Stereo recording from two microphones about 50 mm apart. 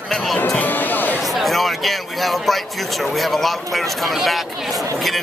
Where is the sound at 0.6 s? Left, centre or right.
Left.